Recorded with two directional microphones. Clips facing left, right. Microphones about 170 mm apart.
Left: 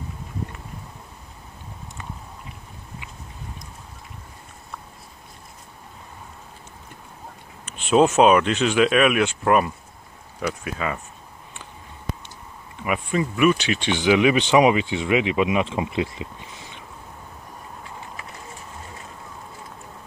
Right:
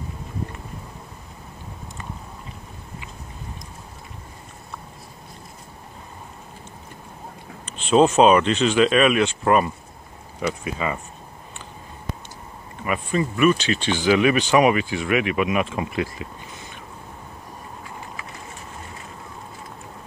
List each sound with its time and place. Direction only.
7.6 s speech: 10° left (ahead or behind)
12.8 s speech: 10° left (ahead or behind)